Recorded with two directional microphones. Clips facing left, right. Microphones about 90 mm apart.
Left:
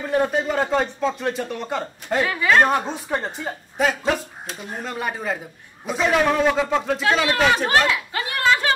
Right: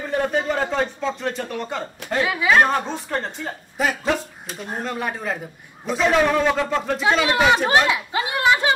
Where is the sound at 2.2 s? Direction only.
5° right (ahead or behind).